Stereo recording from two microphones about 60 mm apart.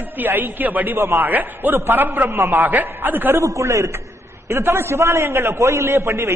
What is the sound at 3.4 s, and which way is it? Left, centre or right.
Speech, right.